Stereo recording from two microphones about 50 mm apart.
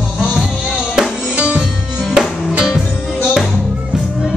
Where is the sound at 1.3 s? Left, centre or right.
Right.